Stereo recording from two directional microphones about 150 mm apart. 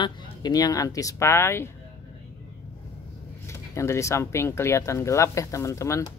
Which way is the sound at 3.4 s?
20° left (ahead or behind).